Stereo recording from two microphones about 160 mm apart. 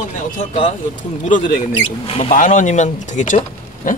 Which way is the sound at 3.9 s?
55° left (ahead or behind).